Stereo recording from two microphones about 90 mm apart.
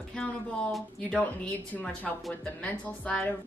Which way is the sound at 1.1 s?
15° left (ahead or behind).